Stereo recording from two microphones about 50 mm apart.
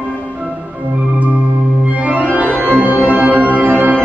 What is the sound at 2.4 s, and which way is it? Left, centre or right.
Music, right.